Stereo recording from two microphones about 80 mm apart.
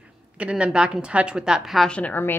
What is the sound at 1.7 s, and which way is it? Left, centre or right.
Speech, centre.